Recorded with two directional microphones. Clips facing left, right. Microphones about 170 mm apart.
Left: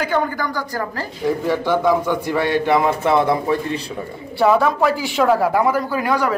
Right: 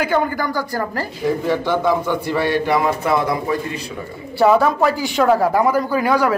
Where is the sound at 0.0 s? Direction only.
10° right (ahead or behind).